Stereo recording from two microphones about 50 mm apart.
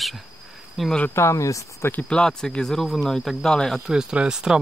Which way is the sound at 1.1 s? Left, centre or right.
Left.